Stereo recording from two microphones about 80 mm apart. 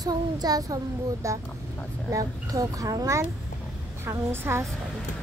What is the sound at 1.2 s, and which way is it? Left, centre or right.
A child's voice, right.